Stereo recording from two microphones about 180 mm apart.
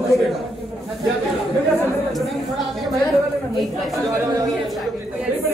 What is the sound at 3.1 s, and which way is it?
A woman's voice, centre (ahead or behind).